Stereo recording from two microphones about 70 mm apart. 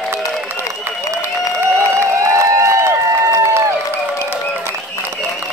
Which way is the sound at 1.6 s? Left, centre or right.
Right.